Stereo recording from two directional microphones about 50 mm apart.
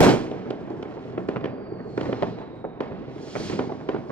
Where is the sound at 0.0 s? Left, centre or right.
Left.